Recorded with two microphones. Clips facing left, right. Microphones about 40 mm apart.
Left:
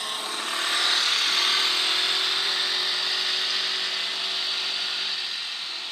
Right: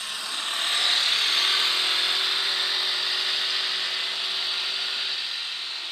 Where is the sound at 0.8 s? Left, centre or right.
Centre.